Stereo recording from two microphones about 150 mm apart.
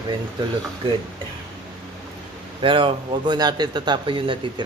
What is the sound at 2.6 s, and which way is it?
Speech, 35° right (ahead or behind).